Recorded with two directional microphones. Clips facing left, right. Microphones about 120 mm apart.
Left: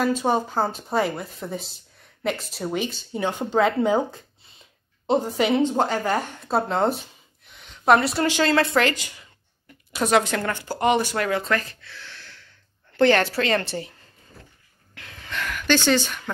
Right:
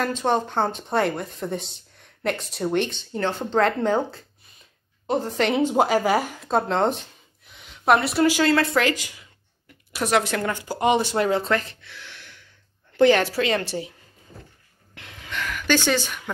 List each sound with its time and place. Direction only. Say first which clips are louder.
0.0 s speech: left 1 dB; 10° left (ahead or behind)
5.5 s speech: right 3 dB; 10° right (ahead or behind)
15.0 s gasp: even; 20° right (ahead or behind)
15.2 s a sound: left 1 dB; 5° right (ahead or behind)